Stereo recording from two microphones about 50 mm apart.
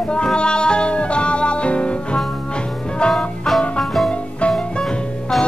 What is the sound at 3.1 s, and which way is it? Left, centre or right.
Music, centre.